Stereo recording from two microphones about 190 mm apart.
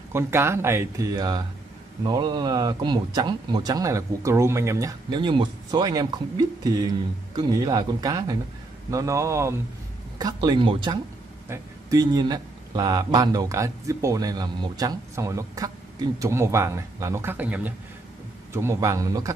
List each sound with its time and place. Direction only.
0.1 s speech: 15° right (ahead or behind)